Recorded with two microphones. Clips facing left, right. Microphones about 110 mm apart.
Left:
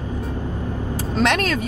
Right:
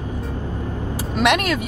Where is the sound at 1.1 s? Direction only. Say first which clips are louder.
Right 1 dB; 10° right (ahead or behind).